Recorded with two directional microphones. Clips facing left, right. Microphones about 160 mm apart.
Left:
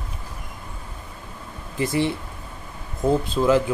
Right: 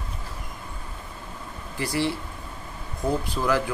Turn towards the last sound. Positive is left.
turn(degrees=20)  # may be behind; listen again after turning